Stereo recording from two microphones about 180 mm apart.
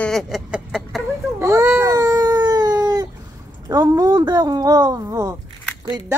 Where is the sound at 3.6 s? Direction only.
20° right (ahead or behind).